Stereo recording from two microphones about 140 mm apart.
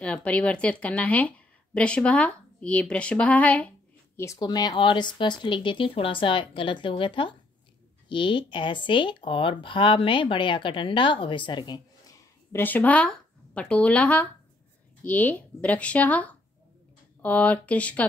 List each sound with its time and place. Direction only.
0.0 s a woman's voice: 10° left (ahead or behind)
4.2 s speech: 25° left (ahead or behind)
12.5 s a woman's voice: 10° left (ahead or behind)